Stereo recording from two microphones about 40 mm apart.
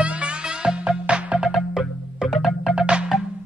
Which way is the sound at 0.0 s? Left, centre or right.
Right.